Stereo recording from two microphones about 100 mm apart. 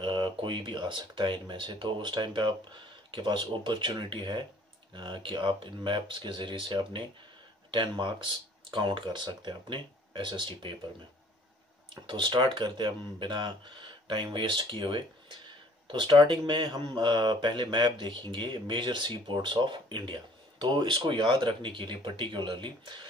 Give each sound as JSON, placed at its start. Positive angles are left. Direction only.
{"t": 0.0, "sound": "speech", "side_deg": -55}
{"t": 11.9, "sound": "speech", "side_deg": -50}